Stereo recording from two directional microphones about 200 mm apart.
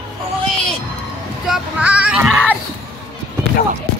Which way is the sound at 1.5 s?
5° right (ahead or behind).